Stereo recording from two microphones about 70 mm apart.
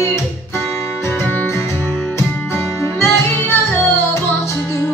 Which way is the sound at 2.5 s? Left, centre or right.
Left.